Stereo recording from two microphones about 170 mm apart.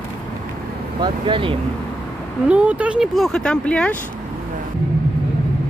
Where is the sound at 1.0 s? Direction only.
30° right (ahead or behind).